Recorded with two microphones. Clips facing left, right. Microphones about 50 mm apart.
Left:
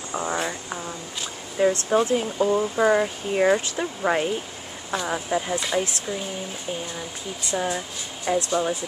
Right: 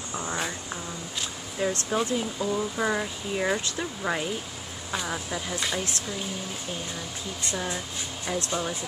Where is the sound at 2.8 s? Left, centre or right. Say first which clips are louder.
Left 7 dB; left.